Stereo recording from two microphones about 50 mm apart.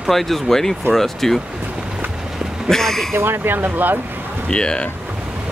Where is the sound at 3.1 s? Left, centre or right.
Right.